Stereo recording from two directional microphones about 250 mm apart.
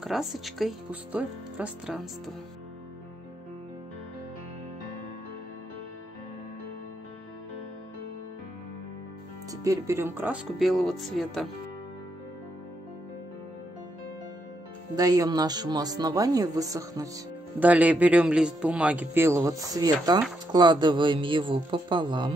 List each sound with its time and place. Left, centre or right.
0.0 s speech: centre
9.5 s speech: centre
15.0 s speech: centre